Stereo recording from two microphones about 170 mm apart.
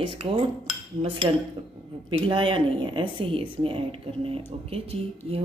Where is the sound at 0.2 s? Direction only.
35° right (ahead or behind).